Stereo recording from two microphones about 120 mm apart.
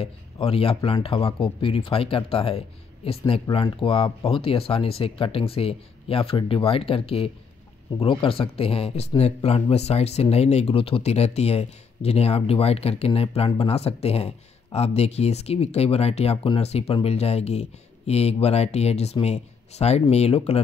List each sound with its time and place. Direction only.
0.0 s speech: 50° left (ahead or behind)